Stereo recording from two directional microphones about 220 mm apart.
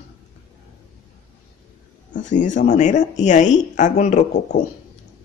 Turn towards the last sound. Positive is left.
turn(degrees=30)  # may be behind; listen again after turning